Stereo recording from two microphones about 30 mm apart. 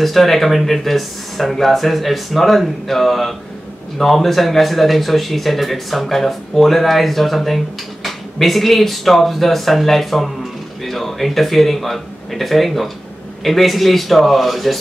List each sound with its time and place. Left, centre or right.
0.0 s speech: centre